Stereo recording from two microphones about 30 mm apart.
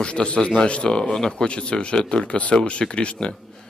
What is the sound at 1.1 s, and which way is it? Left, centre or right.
Speech, left.